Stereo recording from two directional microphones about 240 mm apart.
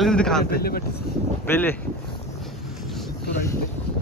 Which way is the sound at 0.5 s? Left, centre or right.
Left.